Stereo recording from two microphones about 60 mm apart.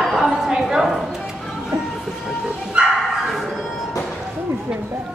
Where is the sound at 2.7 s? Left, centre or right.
Centre.